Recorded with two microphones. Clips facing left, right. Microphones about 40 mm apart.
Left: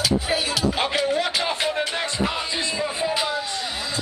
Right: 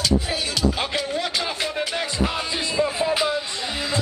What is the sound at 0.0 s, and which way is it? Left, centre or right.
Music, centre.